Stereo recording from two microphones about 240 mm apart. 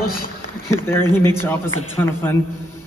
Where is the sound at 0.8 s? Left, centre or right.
Centre.